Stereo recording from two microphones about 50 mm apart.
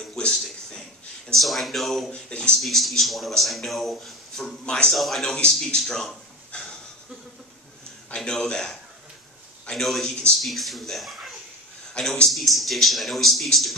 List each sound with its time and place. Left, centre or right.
0.3 s a sound: centre
1.4 s speech: centre
2.0 s speech: centre
2.5 s speech: centre
4.6 s speech: centre
4.9 s speech: centre
5.2 s a man's voice: centre
8.2 s speech: centre